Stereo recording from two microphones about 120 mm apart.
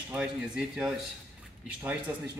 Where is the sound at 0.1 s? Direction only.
10° right (ahead or behind).